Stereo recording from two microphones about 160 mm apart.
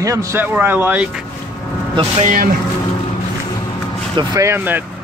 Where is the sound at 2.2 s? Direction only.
55° right (ahead or behind).